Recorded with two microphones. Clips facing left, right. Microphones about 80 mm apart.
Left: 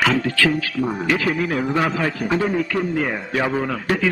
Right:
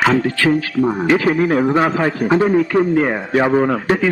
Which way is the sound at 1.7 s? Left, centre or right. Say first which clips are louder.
Right 5 dB; right.